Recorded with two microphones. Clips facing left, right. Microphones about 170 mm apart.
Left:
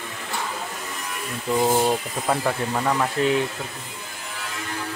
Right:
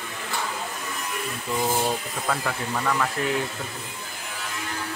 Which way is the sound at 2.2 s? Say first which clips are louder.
Left 5 dB; 25° left (ahead or behind).